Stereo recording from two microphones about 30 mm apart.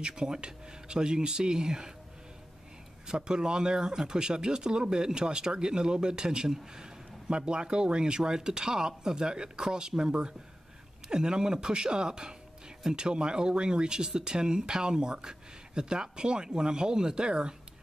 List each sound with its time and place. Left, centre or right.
0.0 s speech: right
3.1 s speech: right